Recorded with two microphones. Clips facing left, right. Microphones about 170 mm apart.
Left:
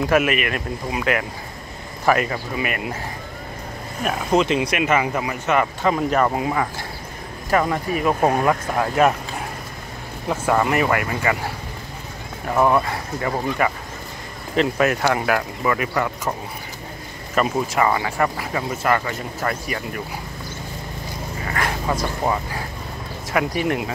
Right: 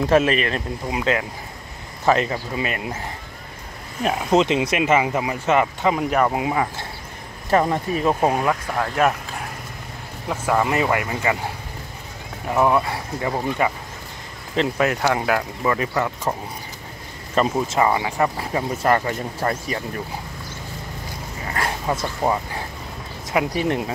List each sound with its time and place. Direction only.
0.0 s speech: 30° right (ahead or behind)
4.0 s speech: 20° right (ahead or behind)
8.1 s speech: 10° right (ahead or behind)
8.5 s speech: 5° left (ahead or behind)
10.4 s speech: centre (ahead or behind)
10.7 s speech: 20° right (ahead or behind)
12.5 s speech: 5° right (ahead or behind); by 16.1 s 25° right (ahead or behind)
17.4 s speech: 25° right (ahead or behind)
18.5 s speech: 35° right (ahead or behind)
23.5 s speech: 30° right (ahead or behind)